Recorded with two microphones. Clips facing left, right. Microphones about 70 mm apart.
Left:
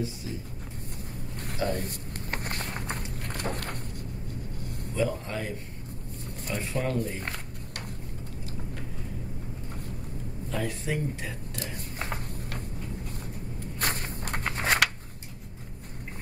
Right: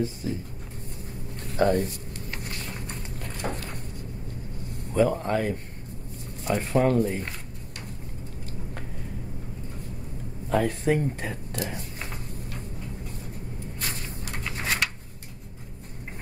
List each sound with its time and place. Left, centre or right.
0.0 s speech: right
1.6 s speech: right
1.9 s a sound: left
4.9 s speech: right
10.5 s speech: right
12.0 s a sound: left